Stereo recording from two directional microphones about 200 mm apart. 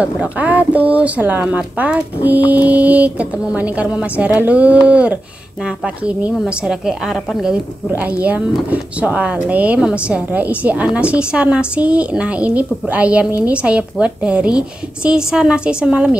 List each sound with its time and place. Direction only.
0.0 s a woman's voice: 5° right (ahead or behind)